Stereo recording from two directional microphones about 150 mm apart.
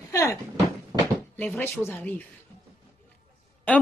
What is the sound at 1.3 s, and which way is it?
Speech, 10° left (ahead or behind).